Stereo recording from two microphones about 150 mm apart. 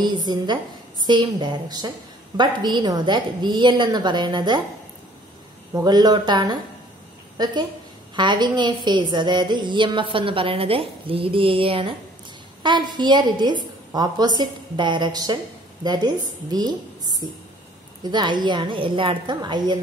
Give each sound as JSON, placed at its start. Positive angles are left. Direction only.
{"t": 0.0, "sound": "a woman's voice", "side_deg": -30}
{"t": 5.9, "sound": "a woman's voice", "side_deg": -25}